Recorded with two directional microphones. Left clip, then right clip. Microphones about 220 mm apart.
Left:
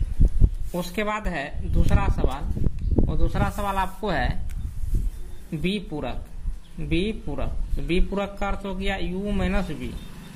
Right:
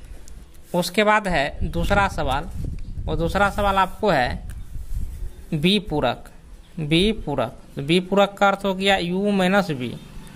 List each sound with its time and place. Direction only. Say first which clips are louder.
0.7 s a man's voice: right 9 dB; 40° right (ahead or behind)
5.5 s a man's voice: right 8 dB; 45° right (ahead or behind)